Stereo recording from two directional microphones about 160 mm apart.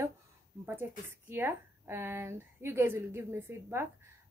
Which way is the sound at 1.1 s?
15° right (ahead or behind).